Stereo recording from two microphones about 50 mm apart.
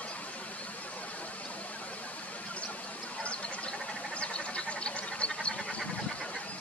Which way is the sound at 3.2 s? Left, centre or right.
Left.